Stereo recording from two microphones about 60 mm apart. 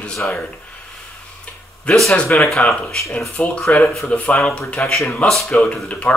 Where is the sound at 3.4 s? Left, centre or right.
Left.